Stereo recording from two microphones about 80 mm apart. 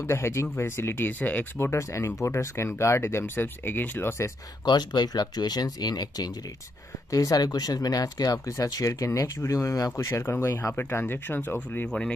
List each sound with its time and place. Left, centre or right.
0.0 s speech: left
1.6 s speech: left
4.6 s speech: left